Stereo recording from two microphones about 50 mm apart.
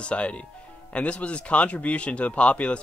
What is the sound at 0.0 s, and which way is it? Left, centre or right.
Speech, left.